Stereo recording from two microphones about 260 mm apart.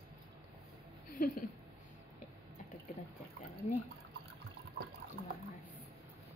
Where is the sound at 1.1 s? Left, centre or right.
Left.